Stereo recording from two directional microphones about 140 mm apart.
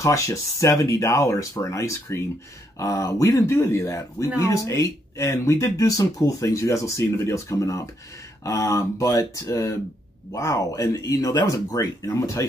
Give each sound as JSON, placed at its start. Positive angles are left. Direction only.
{"t": 0.0, "sound": "speech", "side_deg": 20}